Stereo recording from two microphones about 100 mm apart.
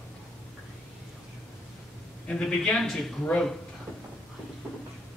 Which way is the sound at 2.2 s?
10° left (ahead or behind).